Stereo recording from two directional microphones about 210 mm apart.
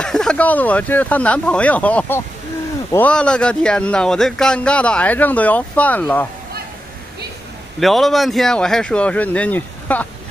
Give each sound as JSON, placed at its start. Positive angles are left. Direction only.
{"t": 0.0, "sound": "speech", "side_deg": 5}
{"t": 7.8, "sound": "speech", "side_deg": 0}